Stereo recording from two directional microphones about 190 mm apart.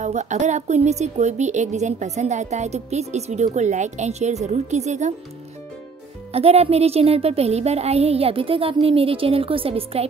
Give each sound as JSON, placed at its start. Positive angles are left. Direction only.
{"t": 0.0, "sound": "a woman's voice", "side_deg": -40}
{"t": 6.3, "sound": "a woman's voice", "side_deg": -30}